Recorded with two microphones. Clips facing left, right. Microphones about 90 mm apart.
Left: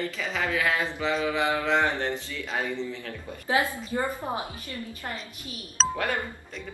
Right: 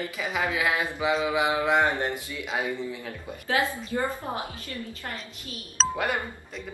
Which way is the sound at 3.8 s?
20° left (ahead or behind).